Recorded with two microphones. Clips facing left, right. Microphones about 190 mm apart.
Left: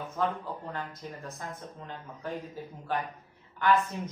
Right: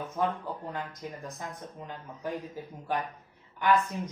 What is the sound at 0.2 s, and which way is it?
Speech, 15° right (ahead or behind).